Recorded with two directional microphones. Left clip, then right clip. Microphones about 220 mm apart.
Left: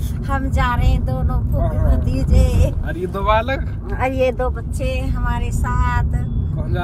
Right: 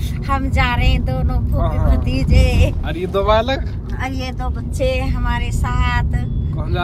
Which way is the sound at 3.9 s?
25° left (ahead or behind).